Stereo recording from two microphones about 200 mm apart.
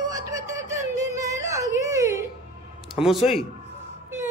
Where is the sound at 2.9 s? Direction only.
Centre (ahead or behind).